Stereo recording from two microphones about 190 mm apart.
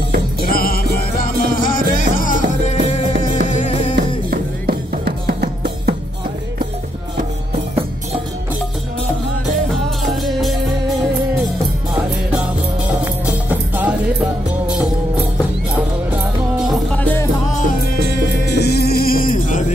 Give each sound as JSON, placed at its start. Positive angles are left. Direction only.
{"t": 0.5, "sound": "music", "side_deg": 50}
{"t": 4.3, "sound": "music", "side_deg": -55}
{"t": 7.2, "sound": "music", "side_deg": -35}
{"t": 13.0, "sound": "music", "side_deg": -10}
{"t": 16.5, "sound": "music", "side_deg": 0}
{"t": 17.6, "sound": "music", "side_deg": 55}